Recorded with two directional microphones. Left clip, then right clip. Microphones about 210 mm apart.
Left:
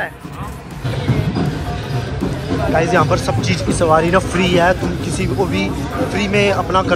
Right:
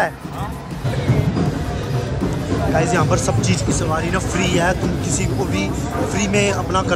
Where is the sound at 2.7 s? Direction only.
5° right (ahead or behind).